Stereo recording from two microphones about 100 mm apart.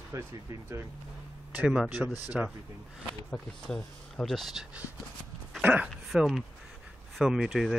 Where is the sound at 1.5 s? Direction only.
10° right (ahead or behind).